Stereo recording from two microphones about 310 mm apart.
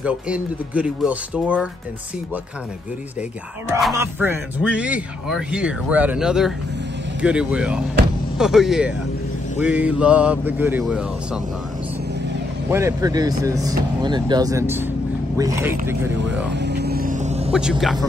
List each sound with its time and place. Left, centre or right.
0.0 s speech: centre
3.7 s speech: centre
12.7 s speech: centre
16.5 s vehicle: right
17.5 s speech: centre